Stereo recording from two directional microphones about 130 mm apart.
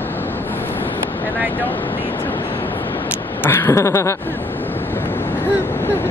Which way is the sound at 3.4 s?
15° left (ahead or behind).